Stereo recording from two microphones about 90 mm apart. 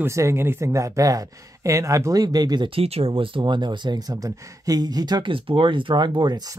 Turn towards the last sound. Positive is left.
turn(degrees=-60)  # may be behind; listen again after turning